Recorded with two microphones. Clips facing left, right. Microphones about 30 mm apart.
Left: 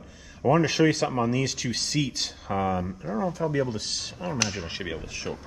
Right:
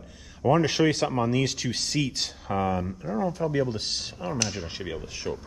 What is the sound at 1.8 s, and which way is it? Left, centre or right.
Speech, left.